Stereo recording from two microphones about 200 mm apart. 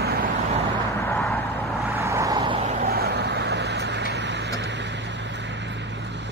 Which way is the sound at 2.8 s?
50° right (ahead or behind).